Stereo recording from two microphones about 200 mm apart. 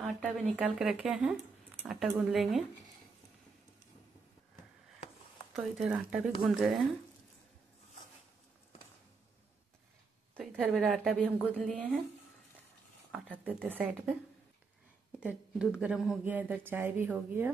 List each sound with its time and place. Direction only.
0.0 s a woman's voice: 5° right (ahead or behind)
5.6 s a woman's voice: 5° right (ahead or behind)
10.3 s a woman's voice: 5° right (ahead or behind)
13.1 s speech: 10° right (ahead or behind)
15.1 s speech: 5° right (ahead or behind)